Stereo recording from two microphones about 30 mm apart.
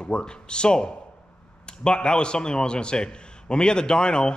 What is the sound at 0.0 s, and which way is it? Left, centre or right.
A man's voice, left.